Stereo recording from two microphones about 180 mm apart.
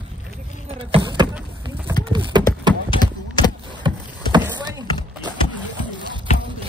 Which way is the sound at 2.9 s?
25° left (ahead or behind).